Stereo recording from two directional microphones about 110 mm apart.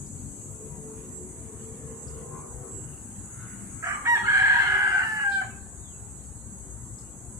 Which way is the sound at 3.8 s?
35° right (ahead or behind).